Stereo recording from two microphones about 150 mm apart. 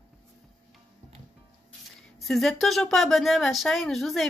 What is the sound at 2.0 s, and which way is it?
Speech, centre (ahead or behind).